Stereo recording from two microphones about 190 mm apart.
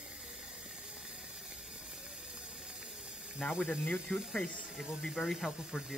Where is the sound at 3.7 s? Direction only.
5° right (ahead or behind).